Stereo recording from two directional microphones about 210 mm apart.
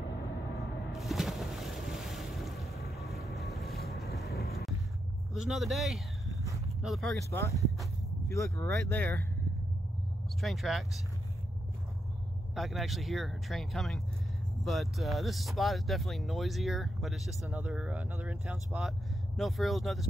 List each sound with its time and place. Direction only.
0.9 s boat: centre (ahead or behind)
3.1 s boat: 50° left (ahead or behind)
5.3 s speech: centre (ahead or behind)
7.2 s speech: 15° left (ahead or behind)
8.5 s speech: 10° left (ahead or behind)
10.4 s speech: centre (ahead or behind)
12.5 s speech: centre (ahead or behind)